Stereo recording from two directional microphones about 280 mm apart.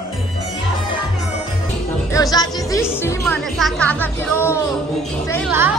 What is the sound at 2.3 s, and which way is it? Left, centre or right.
Music, centre.